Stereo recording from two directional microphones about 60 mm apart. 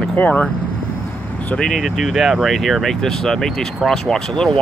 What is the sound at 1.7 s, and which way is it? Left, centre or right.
Speech, centre.